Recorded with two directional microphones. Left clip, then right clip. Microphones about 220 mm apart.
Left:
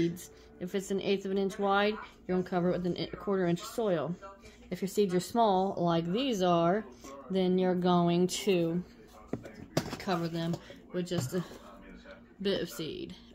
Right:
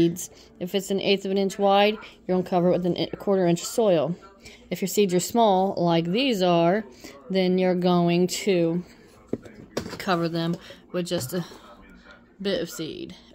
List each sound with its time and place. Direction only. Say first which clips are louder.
0.0 s speech: right 10 dB; 40° right (ahead or behind)
9.9 s speech: right 13 dB; 40° right (ahead or behind)